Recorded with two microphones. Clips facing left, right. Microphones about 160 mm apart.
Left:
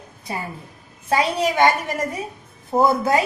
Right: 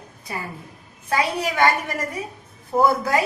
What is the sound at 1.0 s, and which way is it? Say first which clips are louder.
Speech: left 3 dB; 25° left (ahead or behind).